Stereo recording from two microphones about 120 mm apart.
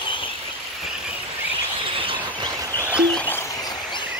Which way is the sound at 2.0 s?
45° right (ahead or behind).